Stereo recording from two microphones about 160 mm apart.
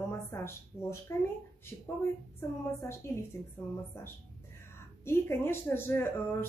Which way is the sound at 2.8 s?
15° left (ahead or behind).